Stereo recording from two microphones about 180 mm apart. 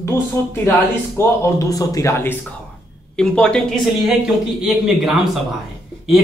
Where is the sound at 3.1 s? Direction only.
5° left (ahead or behind).